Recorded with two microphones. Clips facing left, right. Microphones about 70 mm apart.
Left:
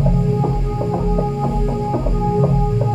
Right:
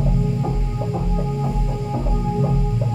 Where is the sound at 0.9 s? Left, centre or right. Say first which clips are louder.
Left 5 dB; left.